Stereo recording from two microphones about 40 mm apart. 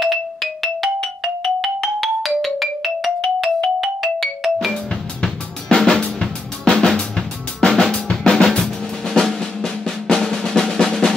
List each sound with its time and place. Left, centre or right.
0.0 s music: centre
5.9 s drum: centre
7.9 s music: centre
8.5 s drum: centre